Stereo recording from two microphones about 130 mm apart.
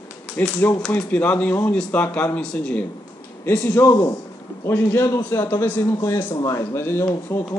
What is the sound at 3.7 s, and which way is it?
Speech, 25° left (ahead or behind).